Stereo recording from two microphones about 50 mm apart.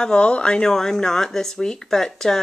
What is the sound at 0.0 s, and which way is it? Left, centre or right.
Speech, left.